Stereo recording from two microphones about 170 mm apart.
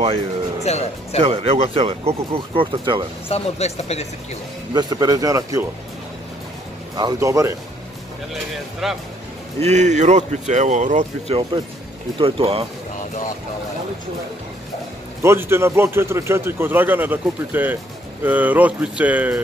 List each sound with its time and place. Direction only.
0.7 s speech: 40° left (ahead or behind)
1.2 s speech: 35° right (ahead or behind)
3.3 s speech: 35° left (ahead or behind)
4.7 s speech: 25° right (ahead or behind)
7.0 s speech: 20° right (ahead or behind)
8.8 s speech: centre (ahead or behind)
9.6 s speech: 40° right (ahead or behind)
15.2 s a man's voice: 15° right (ahead or behind)